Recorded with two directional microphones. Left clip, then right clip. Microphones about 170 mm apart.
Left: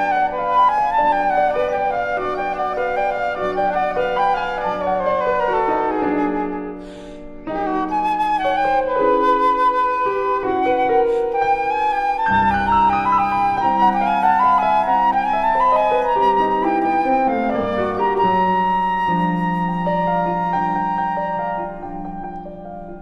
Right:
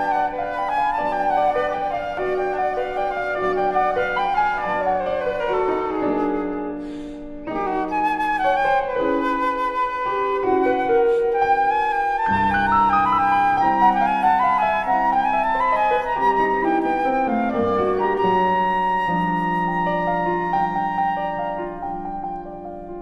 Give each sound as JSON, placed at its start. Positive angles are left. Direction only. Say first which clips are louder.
{"t": 0.0, "sound": "flute", "louder": "left 3 dB", "side_deg": 20}
{"t": 3.5, "sound": "music", "louder": "even", "side_deg": 20}
{"t": 5.4, "sound": "music", "louder": "left 3 dB", "side_deg": 20}
{"t": 8.0, "sound": "flute", "louder": "left 1 dB", "side_deg": 20}
{"t": 18.2, "sound": "music", "louder": "left 2 dB", "side_deg": 10}